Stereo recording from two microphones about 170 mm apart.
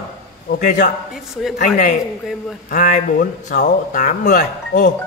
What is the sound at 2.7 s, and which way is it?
A man's voice, 50° left (ahead or behind).